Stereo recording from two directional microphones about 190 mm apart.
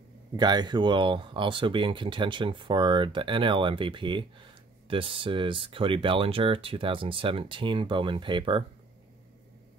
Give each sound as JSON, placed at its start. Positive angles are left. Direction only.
{"t": 0.4, "sound": "speech", "side_deg": -20}